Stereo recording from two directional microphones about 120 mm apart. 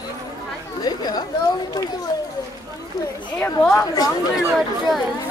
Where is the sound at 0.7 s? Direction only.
35° left (ahead or behind).